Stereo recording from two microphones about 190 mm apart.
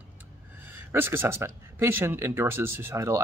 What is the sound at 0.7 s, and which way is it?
Speech, 10° right (ahead or behind).